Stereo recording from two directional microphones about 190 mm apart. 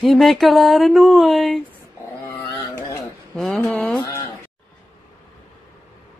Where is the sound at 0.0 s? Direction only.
Centre (ahead or behind).